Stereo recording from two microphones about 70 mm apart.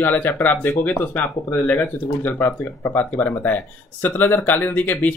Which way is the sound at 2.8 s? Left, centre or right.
Left.